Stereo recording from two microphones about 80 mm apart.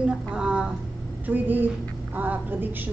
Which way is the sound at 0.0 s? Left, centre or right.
Centre.